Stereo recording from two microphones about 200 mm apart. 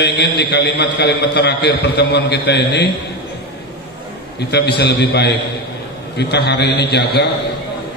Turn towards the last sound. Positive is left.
turn(degrees=55)  # may be behind; listen again after turning